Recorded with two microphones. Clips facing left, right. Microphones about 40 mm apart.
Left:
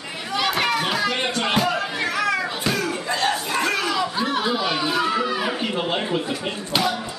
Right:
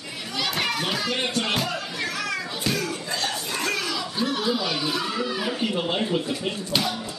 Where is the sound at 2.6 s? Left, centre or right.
Left.